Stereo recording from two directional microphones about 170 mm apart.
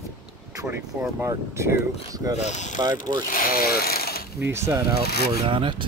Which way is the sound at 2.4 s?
45° left (ahead or behind).